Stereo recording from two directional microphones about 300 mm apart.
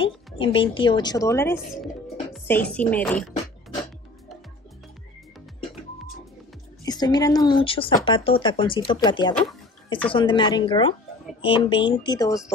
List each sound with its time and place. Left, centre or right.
0.0 s speech: centre
6.8 s speech: centre